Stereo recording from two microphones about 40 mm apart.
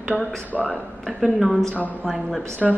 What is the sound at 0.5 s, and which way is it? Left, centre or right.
Speech, centre.